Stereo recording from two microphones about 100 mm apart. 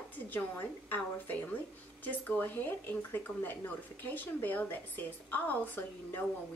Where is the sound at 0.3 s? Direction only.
20° left (ahead or behind).